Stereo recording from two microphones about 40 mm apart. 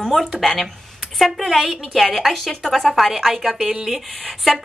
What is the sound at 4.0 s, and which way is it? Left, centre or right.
Speech, centre.